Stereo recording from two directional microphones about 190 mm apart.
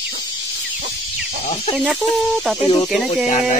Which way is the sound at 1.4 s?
30° left (ahead or behind).